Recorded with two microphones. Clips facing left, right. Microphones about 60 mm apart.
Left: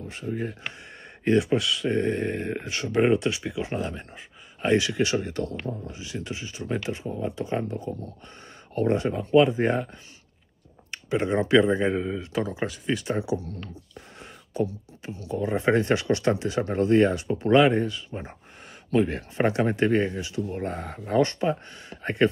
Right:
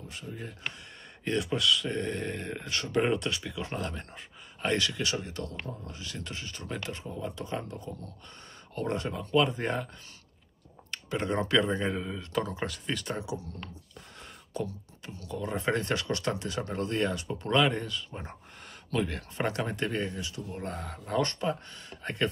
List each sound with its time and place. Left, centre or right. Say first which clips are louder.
0.1 s speech: left 11 dB; left
1.2 s speech: left 7 dB; left
4.9 s speech: left 8 dB; left
5.7 s speech: left 7 dB; centre
10.9 s speech: left 6 dB; centre
13.1 s speech: left 10 dB; left
14.5 s speech: left 8 dB; centre